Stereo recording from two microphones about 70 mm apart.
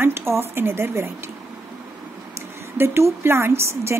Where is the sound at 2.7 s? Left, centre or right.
Right.